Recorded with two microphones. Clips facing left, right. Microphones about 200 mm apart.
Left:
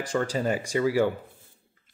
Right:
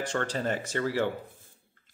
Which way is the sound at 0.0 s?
10° left (ahead or behind).